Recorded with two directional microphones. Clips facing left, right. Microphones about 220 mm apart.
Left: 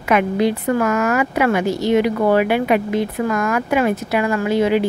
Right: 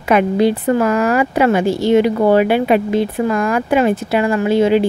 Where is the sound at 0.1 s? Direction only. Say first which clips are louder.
Right 3 dB; 30° right (ahead or behind).